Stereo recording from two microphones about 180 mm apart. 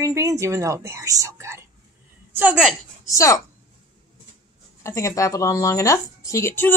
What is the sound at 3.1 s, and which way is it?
Speech, 15° left (ahead or behind).